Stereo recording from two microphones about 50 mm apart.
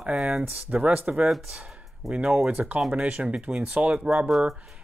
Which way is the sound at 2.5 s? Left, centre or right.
Right.